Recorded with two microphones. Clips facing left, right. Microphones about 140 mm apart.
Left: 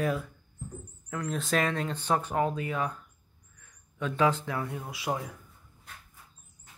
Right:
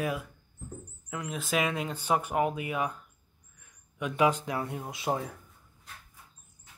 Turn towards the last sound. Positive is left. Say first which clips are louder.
# right 1 dB
turn(degrees=-25)  # may be behind; listen again after turning